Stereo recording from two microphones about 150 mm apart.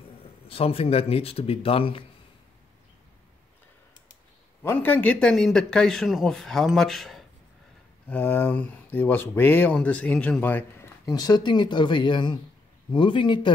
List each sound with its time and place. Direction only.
0.5 s speech: 40° left (ahead or behind)
4.6 s speech: 10° left (ahead or behind)
8.1 s speech: 15° left (ahead or behind)
11.1 s speech: 25° left (ahead or behind)